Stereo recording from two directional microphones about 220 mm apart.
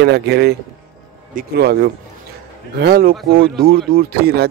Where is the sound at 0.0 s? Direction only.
50° right (ahead or behind).